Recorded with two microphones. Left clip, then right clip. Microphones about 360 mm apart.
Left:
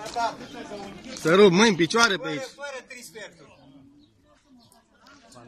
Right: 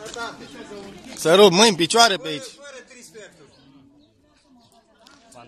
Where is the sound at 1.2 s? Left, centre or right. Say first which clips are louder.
Right 4 dB; centre.